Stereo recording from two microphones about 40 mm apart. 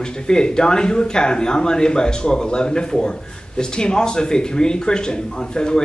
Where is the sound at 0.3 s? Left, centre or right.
Centre.